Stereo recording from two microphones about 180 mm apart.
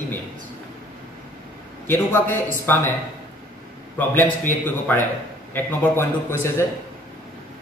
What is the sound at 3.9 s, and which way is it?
A man's voice, 10° left (ahead or behind).